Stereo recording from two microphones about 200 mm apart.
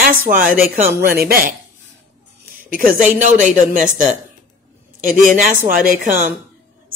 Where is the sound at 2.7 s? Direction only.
45° right (ahead or behind).